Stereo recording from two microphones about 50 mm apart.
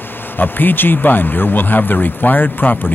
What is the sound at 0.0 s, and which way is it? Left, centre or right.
Speech, left.